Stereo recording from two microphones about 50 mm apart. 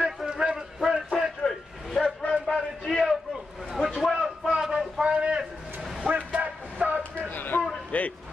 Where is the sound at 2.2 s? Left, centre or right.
Centre.